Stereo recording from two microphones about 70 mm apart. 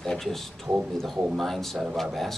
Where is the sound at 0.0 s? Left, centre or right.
Centre.